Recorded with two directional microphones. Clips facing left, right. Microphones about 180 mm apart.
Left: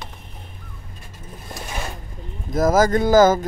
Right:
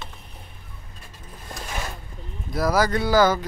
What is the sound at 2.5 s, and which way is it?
Speech, 45° left (ahead or behind).